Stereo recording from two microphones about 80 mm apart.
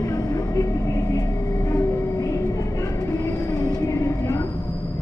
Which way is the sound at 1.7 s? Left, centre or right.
Left.